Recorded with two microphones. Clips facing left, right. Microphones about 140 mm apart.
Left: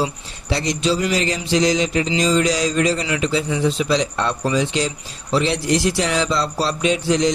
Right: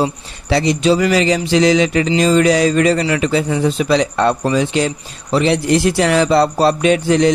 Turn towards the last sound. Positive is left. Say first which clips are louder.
# right 5 dB
turn(degrees=-55)  # may be behind; listen again after turning